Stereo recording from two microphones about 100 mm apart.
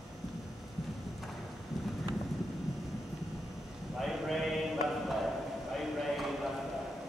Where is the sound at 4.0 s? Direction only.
Centre (ahead or behind).